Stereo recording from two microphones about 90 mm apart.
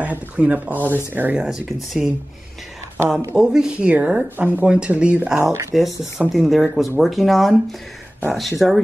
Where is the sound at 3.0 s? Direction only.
10° right (ahead or behind).